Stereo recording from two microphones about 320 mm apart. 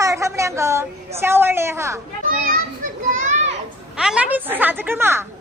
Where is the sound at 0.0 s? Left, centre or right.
Centre.